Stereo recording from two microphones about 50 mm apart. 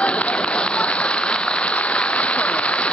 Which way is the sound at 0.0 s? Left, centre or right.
Left.